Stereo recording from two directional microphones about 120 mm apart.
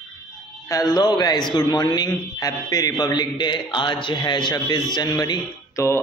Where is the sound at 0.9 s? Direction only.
35° left (ahead or behind).